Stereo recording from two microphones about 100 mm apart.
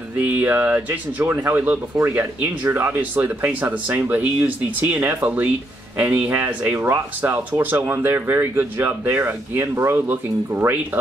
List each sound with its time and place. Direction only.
0.2 s speech: 20° right (ahead or behind)